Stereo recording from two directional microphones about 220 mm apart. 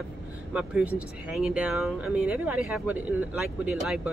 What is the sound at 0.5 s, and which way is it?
Speech, 5° right (ahead or behind).